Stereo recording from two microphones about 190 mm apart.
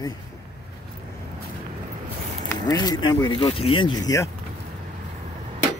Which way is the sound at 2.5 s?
20° left (ahead or behind).